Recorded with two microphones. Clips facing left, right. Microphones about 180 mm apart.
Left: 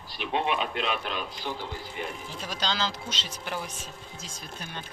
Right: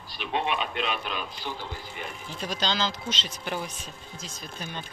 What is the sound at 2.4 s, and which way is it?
Speech, 10° left (ahead or behind).